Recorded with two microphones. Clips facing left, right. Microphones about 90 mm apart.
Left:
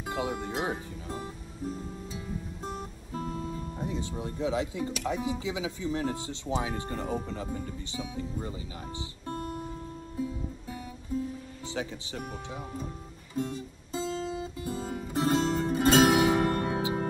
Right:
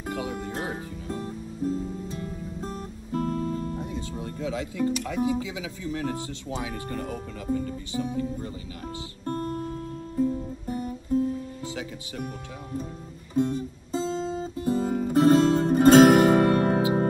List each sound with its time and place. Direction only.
0.1 s speech: 25° left (ahead or behind)
2.0 s music: 55° right (ahead or behind)
3.7 s music: 25° left (ahead or behind)
4.2 s speech: 25° left (ahead or behind)
8.0 s speech: 50° right (ahead or behind)
10.1 s music: 50° right (ahead or behind)
11.7 s speech: 30° left (ahead or behind)
13.4 s music: 35° right (ahead or behind)
14.0 s guitar: 30° right (ahead or behind)
14.6 s music: 50° right (ahead or behind)